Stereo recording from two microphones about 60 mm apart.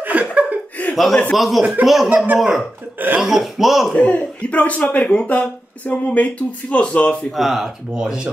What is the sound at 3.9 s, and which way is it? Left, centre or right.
A man's voice, left.